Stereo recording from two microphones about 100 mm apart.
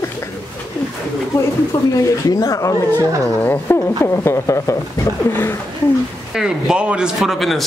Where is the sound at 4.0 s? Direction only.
30° left (ahead or behind).